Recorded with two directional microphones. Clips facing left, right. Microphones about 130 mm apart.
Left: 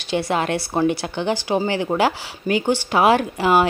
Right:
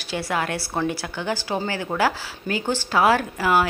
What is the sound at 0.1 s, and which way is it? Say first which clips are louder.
Speech: left 5 dB; 20° left (ahead or behind).